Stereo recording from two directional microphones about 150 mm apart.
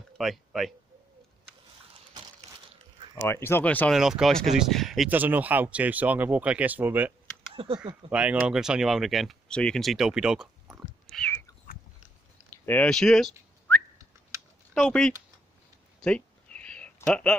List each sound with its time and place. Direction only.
0.2 s speech: centre (ahead or behind)
3.2 s speech: 15° left (ahead or behind)
3.9 s speech: centre (ahead or behind)
5.1 s speech: 10° right (ahead or behind)
7.5 s speech: 35° right (ahead or behind)
8.1 s speech: 10° right (ahead or behind)
11.2 s cat: 15° left (ahead or behind)
12.4 s speech: 15° left (ahead or behind)
14.7 s speech: 5° left (ahead or behind)
16.0 s a sound: 5° left (ahead or behind)